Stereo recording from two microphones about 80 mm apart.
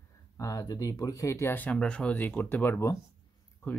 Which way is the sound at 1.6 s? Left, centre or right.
Centre.